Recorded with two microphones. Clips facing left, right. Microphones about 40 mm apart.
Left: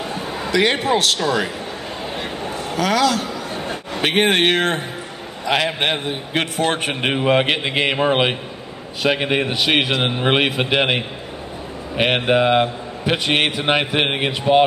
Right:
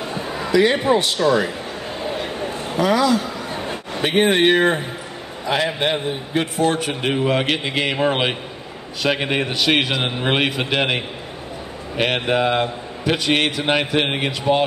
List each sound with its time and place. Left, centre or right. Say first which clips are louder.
0.5 s a man's voice: right 2 dB; left
2.8 s a man's voice: right 1 dB; left
6.7 s a man's voice: left 1 dB; left